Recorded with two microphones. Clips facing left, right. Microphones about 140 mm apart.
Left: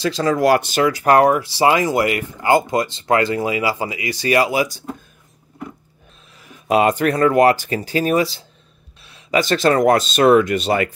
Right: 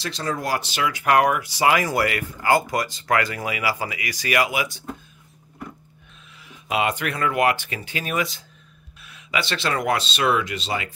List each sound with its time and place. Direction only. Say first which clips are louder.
0.2 s speech: left 10 dB; 90° left
0.6 s speech: left 8 dB; 45° left (ahead or behind)
6.4 s speech: left 8 dB; 45° left (ahead or behind)